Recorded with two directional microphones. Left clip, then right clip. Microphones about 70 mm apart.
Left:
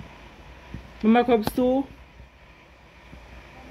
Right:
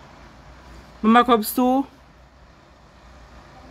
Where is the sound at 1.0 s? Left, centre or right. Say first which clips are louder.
Right 4 dB; right.